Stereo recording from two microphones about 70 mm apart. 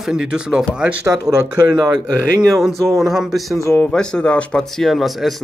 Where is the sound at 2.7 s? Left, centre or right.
Right.